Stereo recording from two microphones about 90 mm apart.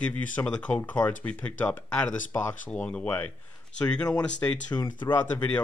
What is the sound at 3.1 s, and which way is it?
Speech, 25° left (ahead or behind).